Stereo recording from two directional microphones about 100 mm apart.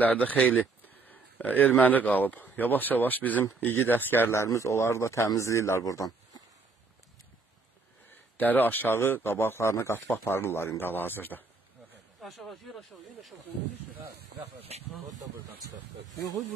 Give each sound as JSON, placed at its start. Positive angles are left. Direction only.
{"t": 0.0, "sound": "speech", "side_deg": 15}
{"t": 8.1, "sound": "speech", "side_deg": 20}
{"t": 12.2, "sound": "speech", "side_deg": 0}